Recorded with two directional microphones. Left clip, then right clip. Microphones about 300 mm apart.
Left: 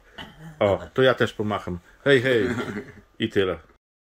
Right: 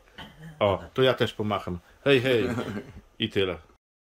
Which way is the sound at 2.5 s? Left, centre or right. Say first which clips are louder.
Left 3 dB; right.